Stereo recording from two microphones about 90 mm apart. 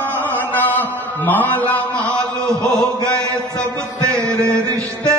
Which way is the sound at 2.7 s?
35° right (ahead or behind).